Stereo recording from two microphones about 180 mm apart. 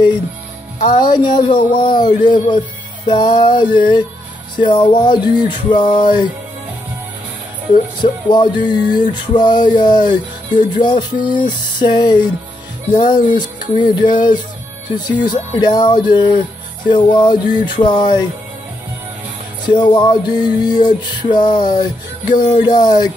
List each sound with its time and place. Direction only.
0.8 s speech: 25° left (ahead or behind)
8.0 s speech: 25° left (ahead or behind)
19.6 s speech: 25° left (ahead or behind)